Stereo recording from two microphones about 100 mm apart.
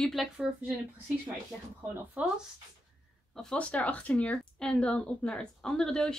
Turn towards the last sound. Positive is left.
turn(degrees=5)  # may be behind; listen again after turning